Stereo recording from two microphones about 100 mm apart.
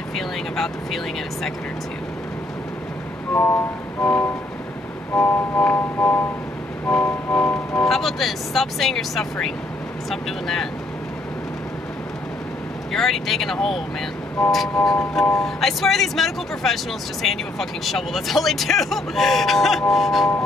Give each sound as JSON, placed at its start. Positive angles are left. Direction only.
{"t": 0.1, "sound": "speech", "side_deg": 5}
{"t": 3.3, "sound": "speech", "side_deg": 5}
{"t": 4.0, "sound": "music", "side_deg": 20}
{"t": 6.9, "sound": "music", "side_deg": 10}
{"t": 7.8, "sound": "speech", "side_deg": 0}
{"t": 12.9, "sound": "speech", "side_deg": 0}